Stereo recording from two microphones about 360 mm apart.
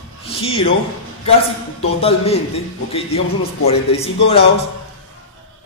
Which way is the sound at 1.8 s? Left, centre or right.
Centre.